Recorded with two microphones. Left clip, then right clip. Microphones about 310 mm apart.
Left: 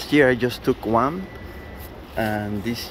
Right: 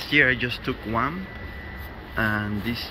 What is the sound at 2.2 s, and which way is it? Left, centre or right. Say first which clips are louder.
Speech: even; centre.